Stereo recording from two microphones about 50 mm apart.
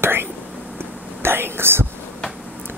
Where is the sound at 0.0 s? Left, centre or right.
Right.